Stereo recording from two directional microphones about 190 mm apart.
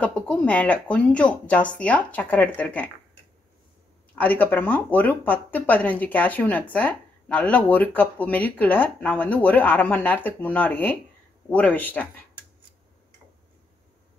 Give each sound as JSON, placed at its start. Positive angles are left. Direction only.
{"t": 0.0, "sound": "speech", "side_deg": 5}
{"t": 4.1, "sound": "speech", "side_deg": 10}